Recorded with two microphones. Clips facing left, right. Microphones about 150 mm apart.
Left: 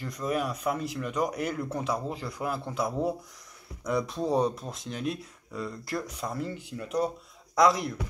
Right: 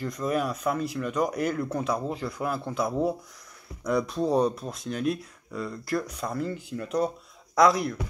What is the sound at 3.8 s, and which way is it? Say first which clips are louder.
Speech: right 3 dB; 20° left (ahead or behind).